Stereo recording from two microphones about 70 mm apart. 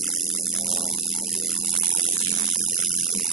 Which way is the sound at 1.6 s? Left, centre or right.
Centre.